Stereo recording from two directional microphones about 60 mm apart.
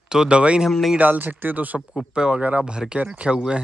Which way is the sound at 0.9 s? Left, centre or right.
Right.